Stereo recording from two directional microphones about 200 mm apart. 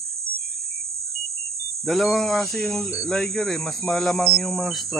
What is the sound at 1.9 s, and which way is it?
Speech, centre (ahead or behind).